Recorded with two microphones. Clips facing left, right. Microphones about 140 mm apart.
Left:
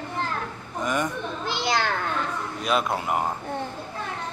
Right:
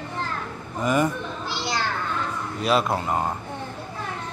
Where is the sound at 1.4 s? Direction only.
55° left (ahead or behind).